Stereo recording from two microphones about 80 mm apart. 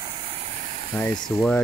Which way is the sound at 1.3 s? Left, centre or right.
Left.